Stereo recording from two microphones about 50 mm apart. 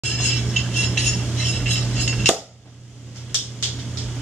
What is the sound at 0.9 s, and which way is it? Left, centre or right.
Cutlery, centre.